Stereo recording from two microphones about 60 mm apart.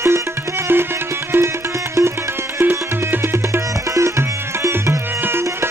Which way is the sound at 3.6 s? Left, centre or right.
Right.